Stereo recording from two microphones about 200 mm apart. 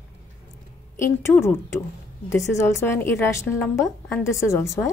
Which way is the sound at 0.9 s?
15° left (ahead or behind).